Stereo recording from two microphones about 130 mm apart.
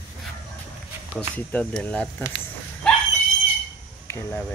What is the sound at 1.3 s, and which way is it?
Speech, 10° left (ahead or behind).